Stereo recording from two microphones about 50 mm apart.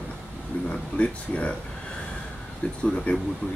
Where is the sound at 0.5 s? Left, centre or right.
Left.